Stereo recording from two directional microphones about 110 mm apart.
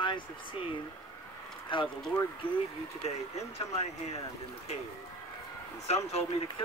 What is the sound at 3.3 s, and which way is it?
Speech, 80° left.